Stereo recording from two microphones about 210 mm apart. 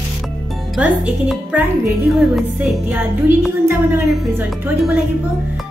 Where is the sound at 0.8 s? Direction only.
5° right (ahead or behind).